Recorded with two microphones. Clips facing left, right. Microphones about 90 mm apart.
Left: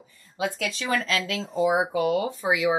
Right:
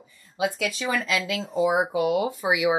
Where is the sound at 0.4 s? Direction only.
5° right (ahead or behind).